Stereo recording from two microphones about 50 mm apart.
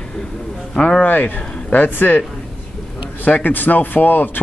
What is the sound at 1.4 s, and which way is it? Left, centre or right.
Speech, left.